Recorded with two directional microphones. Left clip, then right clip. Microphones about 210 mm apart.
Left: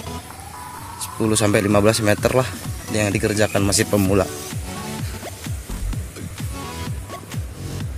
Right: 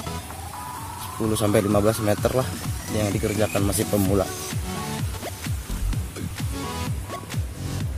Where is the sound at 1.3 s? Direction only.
15° left (ahead or behind).